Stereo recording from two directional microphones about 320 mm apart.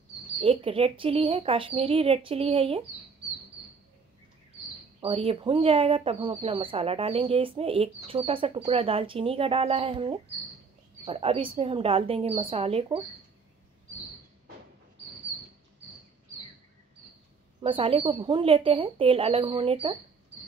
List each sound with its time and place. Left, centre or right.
0.4 s speech: centre
5.0 s speech: centre
17.6 s speech: centre